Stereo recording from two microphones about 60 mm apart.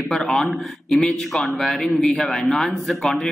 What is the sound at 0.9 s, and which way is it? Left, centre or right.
A man's voice, centre.